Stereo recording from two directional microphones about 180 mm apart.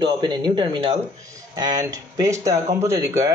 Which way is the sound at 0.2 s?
25° right (ahead or behind).